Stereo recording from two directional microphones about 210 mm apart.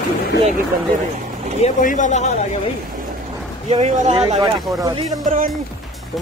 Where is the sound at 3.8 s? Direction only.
30° right (ahead or behind).